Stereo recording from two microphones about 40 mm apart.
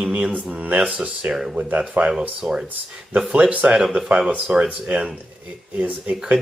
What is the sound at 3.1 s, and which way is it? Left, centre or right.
Speech, right.